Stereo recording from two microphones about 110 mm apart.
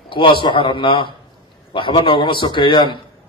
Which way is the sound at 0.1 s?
50° left (ahead or behind).